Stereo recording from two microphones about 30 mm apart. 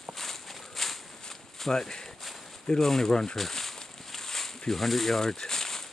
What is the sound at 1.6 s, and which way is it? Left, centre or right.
Speech, centre.